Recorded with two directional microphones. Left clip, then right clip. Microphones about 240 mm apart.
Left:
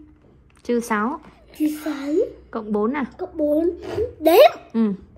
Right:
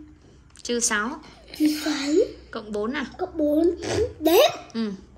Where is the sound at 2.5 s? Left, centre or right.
Left.